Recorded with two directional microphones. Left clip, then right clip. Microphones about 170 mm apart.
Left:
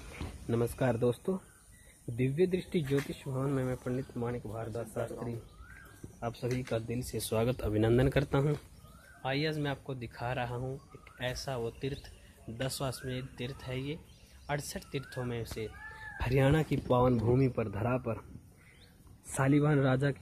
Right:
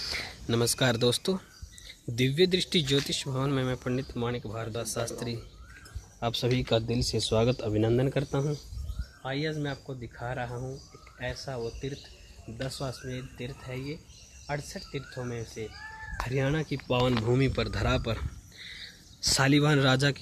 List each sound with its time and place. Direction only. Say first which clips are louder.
0.5 s a man's voice: right 5 dB; 15° right (ahead or behind)
6.1 s speech: right 8 dB; 40° right (ahead or behind)
6.7 s a man's voice: right 8 dB; 30° right (ahead or behind); by 8.5 s 5° left (ahead or behind)
9.2 s speech: right 1 dB; 20° left (ahead or behind)
16.3 s speech: left 2 dB; 40° left (ahead or behind)
17.0 s speech: right 4 dB; 5° left (ahead or behind)
19.3 s a man's voice: right 4 dB; 15° right (ahead or behind)